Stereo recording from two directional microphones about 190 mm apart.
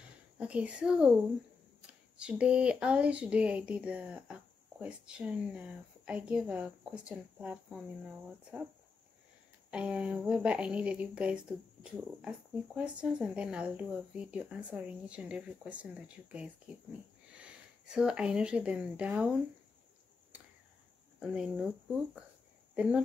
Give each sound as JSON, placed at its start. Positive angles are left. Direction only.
{"t": 0.4, "sound": "speech", "side_deg": -5}
{"t": 9.7, "sound": "speech", "side_deg": -5}
{"t": 21.2, "sound": "speech", "side_deg": -5}
{"t": 22.8, "sound": "speech", "side_deg": -5}